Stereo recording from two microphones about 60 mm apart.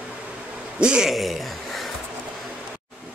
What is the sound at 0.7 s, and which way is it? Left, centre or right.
Speech, centre.